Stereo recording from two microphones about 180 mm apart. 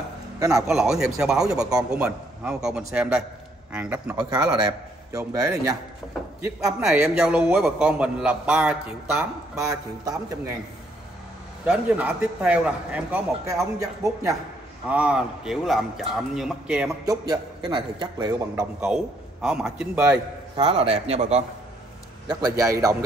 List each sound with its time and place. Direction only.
0.7 s a man's voice: 5° right (ahead or behind)
4.3 s a man's voice: 20° right (ahead or behind)
6.4 s a man's voice: 5° right (ahead or behind)
11.6 s a man's voice: 5° right (ahead or behind)
14.9 s a man's voice: 5° right (ahead or behind)
17.6 s a man's voice: 25° right (ahead or behind)
18.8 s a man's voice: 5° right (ahead or behind)
20.0 s a man's voice: 15° right (ahead or behind)
20.6 s speech: 35° right (ahead or behind)
22.3 s a man's voice: 20° right (ahead or behind)